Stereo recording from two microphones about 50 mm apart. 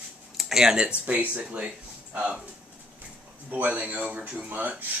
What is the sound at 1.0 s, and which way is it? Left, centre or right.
Speech, right.